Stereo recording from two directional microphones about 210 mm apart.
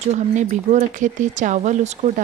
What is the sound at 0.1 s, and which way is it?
Speech, 35° right (ahead or behind).